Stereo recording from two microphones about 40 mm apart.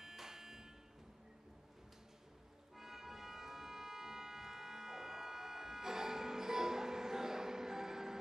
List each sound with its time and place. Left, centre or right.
0.0 s music: centre
2.7 s music: centre